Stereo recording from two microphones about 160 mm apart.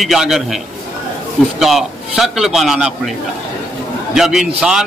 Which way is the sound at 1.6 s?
Centre (ahead or behind).